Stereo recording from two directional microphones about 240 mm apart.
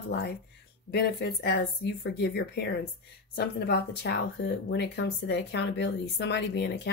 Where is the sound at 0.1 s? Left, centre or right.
Left.